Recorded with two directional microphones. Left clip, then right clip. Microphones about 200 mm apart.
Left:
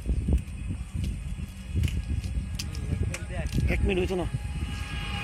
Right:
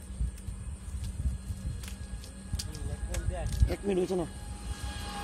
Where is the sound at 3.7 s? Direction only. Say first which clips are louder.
Left 2 dB; 10° left (ahead or behind).